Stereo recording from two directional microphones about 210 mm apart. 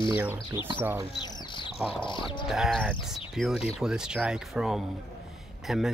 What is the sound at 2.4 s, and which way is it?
Speech, centre (ahead or behind).